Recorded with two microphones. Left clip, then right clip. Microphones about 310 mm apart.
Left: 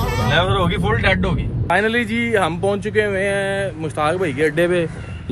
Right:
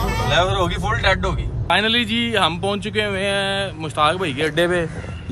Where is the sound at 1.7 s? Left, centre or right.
Centre.